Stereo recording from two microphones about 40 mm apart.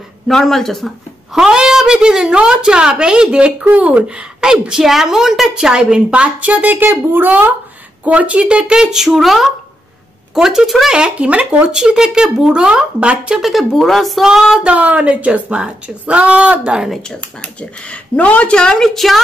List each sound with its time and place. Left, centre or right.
0.3 s speech: centre
1.3 s a woman's voice: centre
3.6 s a woman's voice: right
6.4 s speech: right
6.9 s speech: right
7.2 s speech: right
8.0 s speech: right
8.6 s a woman's voice: centre
10.9 s a woman's voice: right
13.4 s a woman's voice: centre
14.6 s speech: right
17.4 s speech: left
18.6 s speech: centre
18.9 s speech: centre